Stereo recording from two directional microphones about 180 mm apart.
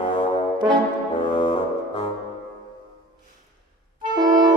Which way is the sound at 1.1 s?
25° left (ahead or behind).